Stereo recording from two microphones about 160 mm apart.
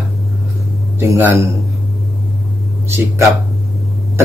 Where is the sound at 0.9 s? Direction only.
15° right (ahead or behind).